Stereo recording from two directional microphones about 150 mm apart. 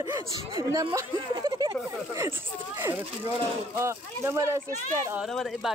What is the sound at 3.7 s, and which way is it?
Speech, 20° right (ahead or behind).